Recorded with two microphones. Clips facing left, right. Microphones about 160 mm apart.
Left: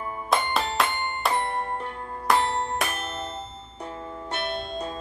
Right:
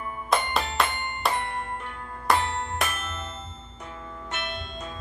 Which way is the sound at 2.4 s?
35° left (ahead or behind).